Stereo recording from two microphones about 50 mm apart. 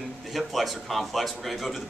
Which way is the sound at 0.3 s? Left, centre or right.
Centre.